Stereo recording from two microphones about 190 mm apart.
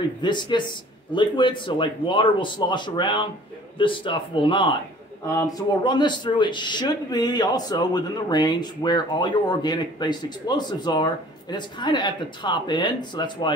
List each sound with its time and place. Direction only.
0.2 s speech: 25° left (ahead or behind)
5.2 s speech: 15° left (ahead or behind)